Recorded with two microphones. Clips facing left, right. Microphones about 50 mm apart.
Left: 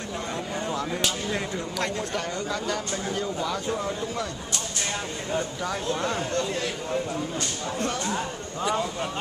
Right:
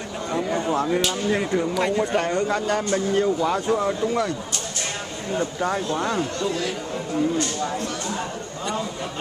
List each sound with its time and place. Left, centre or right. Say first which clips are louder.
1.6 s speech: right 7 dB; centre
2.1 s speech: right 7 dB; right
5.6 s speech: right 4 dB; right